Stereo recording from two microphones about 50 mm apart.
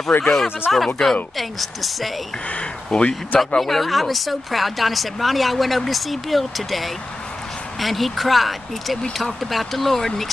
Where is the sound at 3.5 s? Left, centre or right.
Centre.